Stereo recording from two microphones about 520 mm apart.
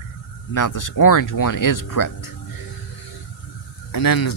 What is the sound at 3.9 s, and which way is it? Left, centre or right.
Speech, left.